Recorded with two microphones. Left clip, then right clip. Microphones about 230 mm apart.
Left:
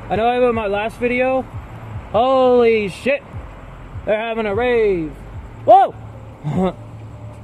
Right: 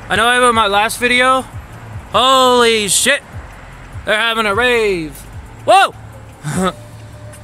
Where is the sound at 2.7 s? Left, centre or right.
Right.